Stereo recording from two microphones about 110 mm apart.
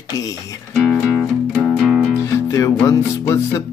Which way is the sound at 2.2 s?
25° left (ahead or behind).